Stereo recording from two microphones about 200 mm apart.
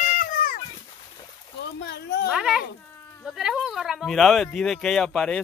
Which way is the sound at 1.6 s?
60° left (ahead or behind).